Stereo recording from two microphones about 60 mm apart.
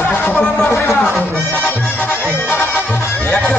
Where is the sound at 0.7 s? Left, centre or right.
Left.